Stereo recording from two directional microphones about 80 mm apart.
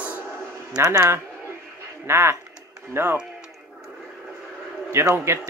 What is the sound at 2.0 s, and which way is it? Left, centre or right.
Speech, right.